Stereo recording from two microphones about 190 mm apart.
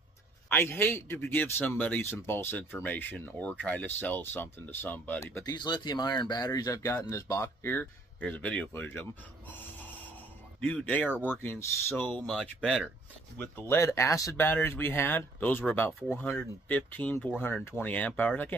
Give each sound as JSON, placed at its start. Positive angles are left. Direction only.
{"t": 0.5, "sound": "speech", "side_deg": 10}
{"t": 5.3, "sound": "speech", "side_deg": 20}
{"t": 10.6, "sound": "speech", "side_deg": 5}